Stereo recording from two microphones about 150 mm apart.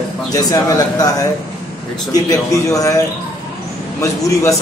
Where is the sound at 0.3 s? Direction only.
25° left (ahead or behind).